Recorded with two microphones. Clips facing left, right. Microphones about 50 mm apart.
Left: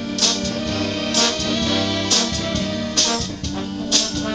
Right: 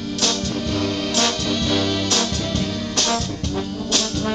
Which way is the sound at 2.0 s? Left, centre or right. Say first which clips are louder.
Even; centre.